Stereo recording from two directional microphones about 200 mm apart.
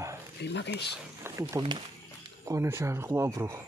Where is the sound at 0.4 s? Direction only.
60° left (ahead or behind).